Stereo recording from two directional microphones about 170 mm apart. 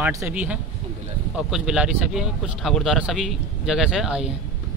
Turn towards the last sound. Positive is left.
turn(degrees=-5)  # may be behind; listen again after turning